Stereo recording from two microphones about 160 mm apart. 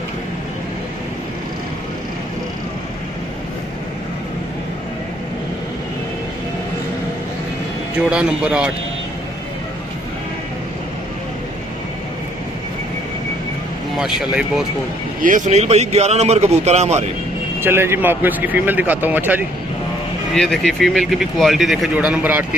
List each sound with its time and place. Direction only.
8.1 s a man's voice: 5° right (ahead or behind)
13.9 s speech: 5° right (ahead or behind)
15.2 s speech: 50° right (ahead or behind)
17.6 s a man's voice: 15° right (ahead or behind)
20.3 s speech: 5° left (ahead or behind)